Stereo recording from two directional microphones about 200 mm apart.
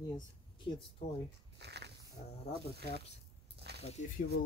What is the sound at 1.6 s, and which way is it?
Dog, 55° right (ahead or behind).